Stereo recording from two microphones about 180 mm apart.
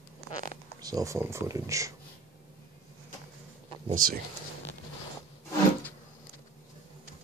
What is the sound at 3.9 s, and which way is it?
Speech, 50° right (ahead or behind).